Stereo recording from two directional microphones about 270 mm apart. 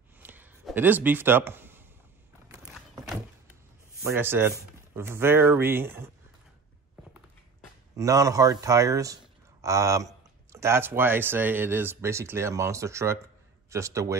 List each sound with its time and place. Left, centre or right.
0.2 s a sound: centre
2.4 s skateboard: centre
4.0 s speech: centre
7.9 s speech: centre